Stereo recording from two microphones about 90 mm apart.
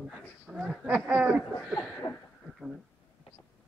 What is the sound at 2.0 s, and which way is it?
Speech, 45° left (ahead or behind).